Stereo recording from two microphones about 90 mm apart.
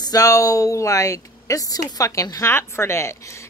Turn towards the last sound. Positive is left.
turn(degrees=30)  # may be behind; listen again after turning